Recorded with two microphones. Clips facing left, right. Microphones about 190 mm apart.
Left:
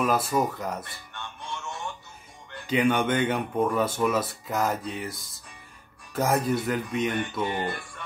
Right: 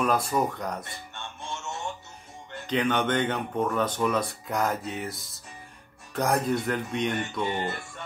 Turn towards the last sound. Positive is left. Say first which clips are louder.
# left 1 dB
turn(degrees=-25)  # may be behind; listen again after turning